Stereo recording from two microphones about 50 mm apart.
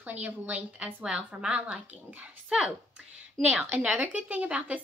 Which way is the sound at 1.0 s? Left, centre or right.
Right.